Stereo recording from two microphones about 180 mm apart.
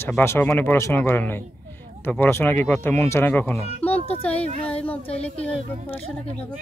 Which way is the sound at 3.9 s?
35° left (ahead or behind).